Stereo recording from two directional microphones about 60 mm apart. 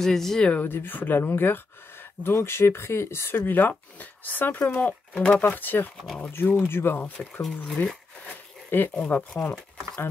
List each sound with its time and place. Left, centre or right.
0.0 s speech: centre
0.7 s speech: left
5.1 s speech: centre
5.4 s speech: left
7.6 s speech: centre
8.6 s a sound: left
8.9 s speech: centre